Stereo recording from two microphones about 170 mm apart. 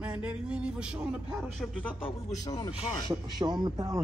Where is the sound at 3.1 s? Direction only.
25° right (ahead or behind).